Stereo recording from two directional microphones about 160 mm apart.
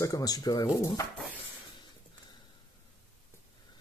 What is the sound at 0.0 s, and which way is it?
Speech, 20° left (ahead or behind).